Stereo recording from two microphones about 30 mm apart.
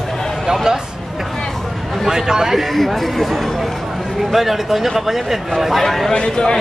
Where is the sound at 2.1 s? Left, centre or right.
Centre.